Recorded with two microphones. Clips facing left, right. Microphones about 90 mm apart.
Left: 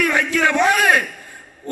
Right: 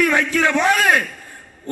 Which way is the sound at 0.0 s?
15° left (ahead or behind).